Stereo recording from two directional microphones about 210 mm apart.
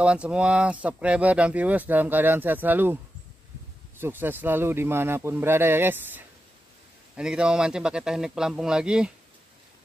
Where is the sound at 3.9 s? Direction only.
10° right (ahead or behind).